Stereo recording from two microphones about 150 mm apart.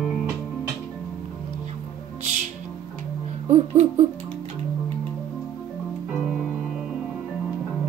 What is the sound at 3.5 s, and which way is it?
Music, 45° right (ahead or behind).